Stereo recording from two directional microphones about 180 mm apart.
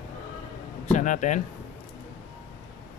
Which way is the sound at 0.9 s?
45° left (ahead or behind).